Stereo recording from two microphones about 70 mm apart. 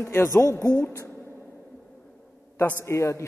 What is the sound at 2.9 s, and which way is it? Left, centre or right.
Speech, left.